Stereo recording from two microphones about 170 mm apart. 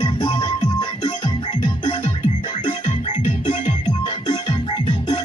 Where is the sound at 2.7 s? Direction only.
35° left (ahead or behind).